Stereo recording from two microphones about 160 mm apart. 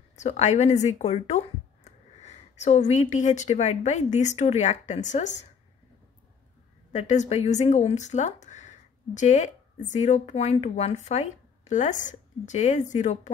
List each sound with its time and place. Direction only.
0.1 s speech: 45° left (ahead or behind)
6.9 s speech: 45° left (ahead or behind)